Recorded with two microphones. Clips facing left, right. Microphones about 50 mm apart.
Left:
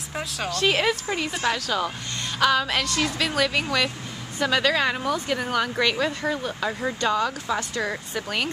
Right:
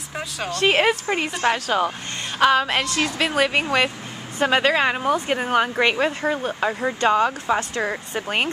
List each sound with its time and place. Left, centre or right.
0.5 s speech: right